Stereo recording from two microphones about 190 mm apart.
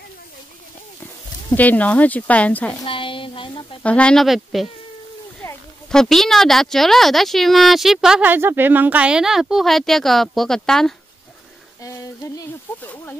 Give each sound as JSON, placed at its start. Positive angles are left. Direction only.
{"t": 1.5, "sound": "speech", "side_deg": 10}
{"t": 2.8, "sound": "a woman's voice", "side_deg": 25}
{"t": 3.8, "sound": "speech", "side_deg": 5}
{"t": 11.8, "sound": "speech", "side_deg": 15}